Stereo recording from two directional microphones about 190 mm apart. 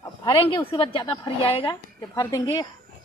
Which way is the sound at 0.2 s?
25° left (ahead or behind).